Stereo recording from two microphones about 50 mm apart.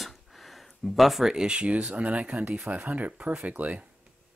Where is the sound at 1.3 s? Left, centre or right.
Centre.